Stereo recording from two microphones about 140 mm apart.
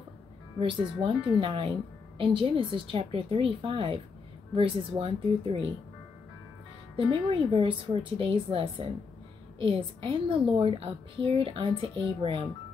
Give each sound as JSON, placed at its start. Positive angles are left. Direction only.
{"t": 0.6, "sound": "a woman's voice", "side_deg": -40}
{"t": 7.0, "sound": "a woman's voice", "side_deg": -40}